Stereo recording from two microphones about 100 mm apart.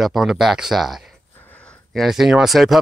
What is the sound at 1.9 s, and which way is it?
Speech, centre (ahead or behind).